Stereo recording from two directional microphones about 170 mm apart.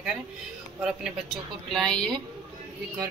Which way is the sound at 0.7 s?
5° right (ahead or behind).